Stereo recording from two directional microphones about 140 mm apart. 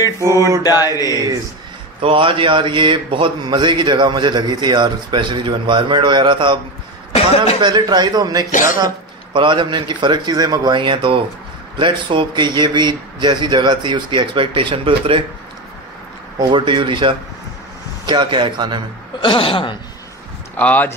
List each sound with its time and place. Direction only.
0.6 s mantra: 25° left (ahead or behind)
2.0 s a man's voice: 40° right (ahead or behind)
7.1 s a sound: 45° left (ahead or behind)
7.6 s speech: 30° right (ahead or behind)
8.5 s speech: 70° left (ahead or behind)
8.8 s a man's voice: 35° right (ahead or behind)
16.3 s a man's voice: 35° right (ahead or behind)
19.2 s speech: 40° left (ahead or behind)
20.5 s speech: 10° left (ahead or behind)